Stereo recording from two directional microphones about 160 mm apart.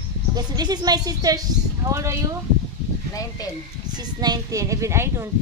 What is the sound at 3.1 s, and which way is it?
Speech, 20° left (ahead or behind).